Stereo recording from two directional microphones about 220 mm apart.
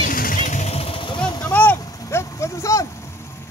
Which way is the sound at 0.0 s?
40° left (ahead or behind).